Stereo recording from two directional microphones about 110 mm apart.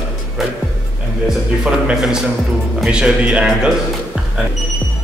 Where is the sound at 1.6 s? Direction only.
5° right (ahead or behind).